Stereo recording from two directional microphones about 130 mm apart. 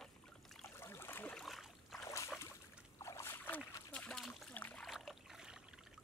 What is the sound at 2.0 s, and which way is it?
Boat, 25° left (ahead or behind).